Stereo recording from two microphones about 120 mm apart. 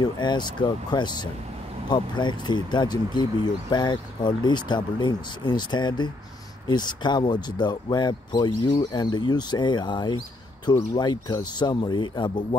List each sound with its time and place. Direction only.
0.0 s speech: 40° left (ahead or behind)